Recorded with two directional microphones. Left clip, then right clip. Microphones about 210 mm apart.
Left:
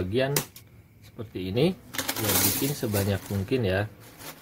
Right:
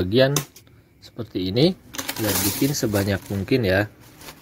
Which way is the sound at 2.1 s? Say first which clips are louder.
Right 3 dB; centre (ahead or behind).